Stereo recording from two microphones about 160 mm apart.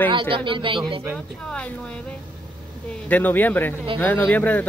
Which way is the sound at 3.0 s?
10° left (ahead or behind).